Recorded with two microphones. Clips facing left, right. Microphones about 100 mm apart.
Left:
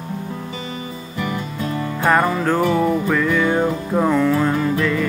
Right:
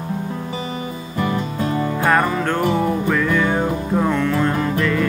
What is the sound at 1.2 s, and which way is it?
Music, 35° right (ahead or behind).